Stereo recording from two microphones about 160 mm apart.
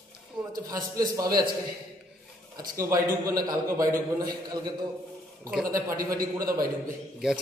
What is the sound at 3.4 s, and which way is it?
Speech, 20° right (ahead or behind).